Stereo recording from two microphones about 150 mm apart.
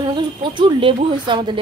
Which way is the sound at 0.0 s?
30° right (ahead or behind).